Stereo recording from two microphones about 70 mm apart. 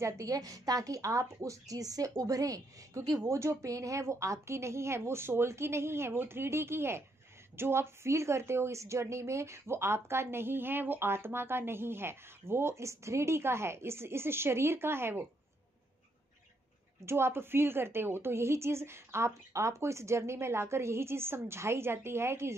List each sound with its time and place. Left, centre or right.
0.0 s a woman's voice: right
17.0 s a woman's voice: right